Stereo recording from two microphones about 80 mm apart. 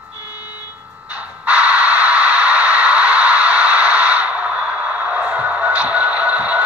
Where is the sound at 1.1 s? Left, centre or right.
Right.